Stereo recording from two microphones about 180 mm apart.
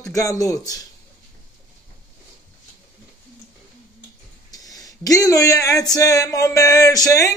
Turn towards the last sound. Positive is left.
turn(degrees=20)  # may be behind; listen again after turning